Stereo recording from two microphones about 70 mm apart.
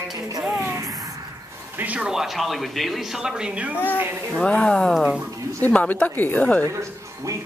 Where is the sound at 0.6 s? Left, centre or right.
Right.